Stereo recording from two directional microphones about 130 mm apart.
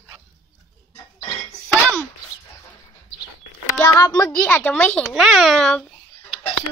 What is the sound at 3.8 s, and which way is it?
A woman's voice, 25° left (ahead or behind).